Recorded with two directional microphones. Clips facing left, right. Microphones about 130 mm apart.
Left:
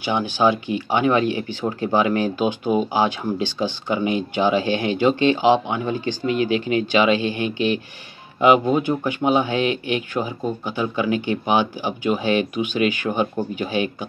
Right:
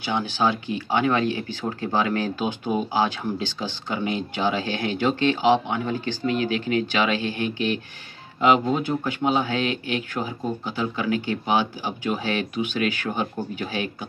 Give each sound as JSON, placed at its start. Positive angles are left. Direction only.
{"t": 0.0, "sound": "speech", "side_deg": 15}